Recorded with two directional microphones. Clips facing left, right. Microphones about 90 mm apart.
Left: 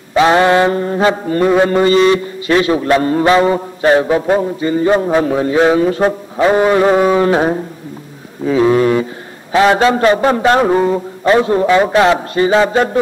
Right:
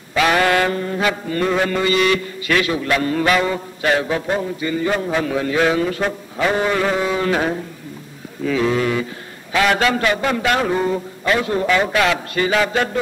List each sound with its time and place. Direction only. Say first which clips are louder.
0.1 s mantra: left 6 dB; 25° left (ahead or behind)